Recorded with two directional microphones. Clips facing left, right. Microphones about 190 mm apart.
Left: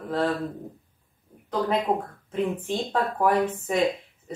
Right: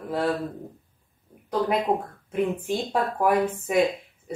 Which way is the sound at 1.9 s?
20° right (ahead or behind).